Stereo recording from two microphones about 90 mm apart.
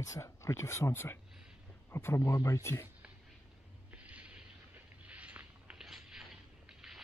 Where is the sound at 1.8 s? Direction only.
25° left (ahead or behind).